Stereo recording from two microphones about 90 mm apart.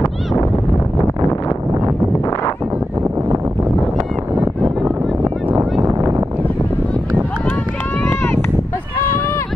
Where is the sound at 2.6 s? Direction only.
15° right (ahead or behind).